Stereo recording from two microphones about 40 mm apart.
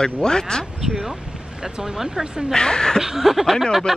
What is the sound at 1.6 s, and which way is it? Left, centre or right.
Speech, centre.